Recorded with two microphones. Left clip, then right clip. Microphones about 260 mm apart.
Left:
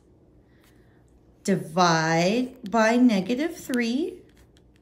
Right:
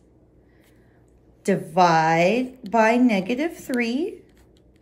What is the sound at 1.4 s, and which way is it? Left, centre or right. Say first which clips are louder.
A woman's voice: right 4 dB; centre.